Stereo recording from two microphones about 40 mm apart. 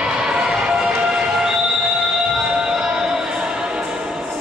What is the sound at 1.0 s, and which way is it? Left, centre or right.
Music, centre.